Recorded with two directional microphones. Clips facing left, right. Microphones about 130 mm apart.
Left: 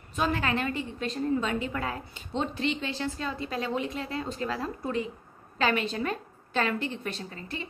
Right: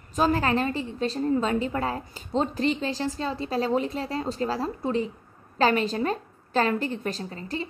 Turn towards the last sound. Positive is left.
turn(degrees=-35)  # may be behind; listen again after turning